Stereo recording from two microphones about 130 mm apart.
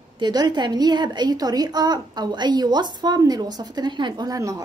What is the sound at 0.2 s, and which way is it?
A woman's voice, 30° right (ahead or behind).